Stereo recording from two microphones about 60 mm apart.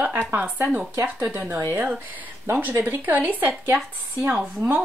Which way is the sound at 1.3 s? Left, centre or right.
Right.